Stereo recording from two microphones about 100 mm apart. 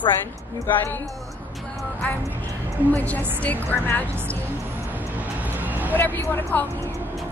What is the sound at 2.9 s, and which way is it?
A woman's voice, 15° left (ahead or behind).